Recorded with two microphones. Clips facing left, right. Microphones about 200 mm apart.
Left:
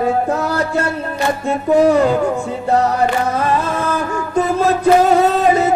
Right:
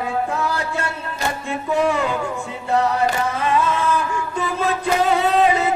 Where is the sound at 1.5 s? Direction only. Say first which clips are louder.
Left 8 dB; 40° left (ahead or behind).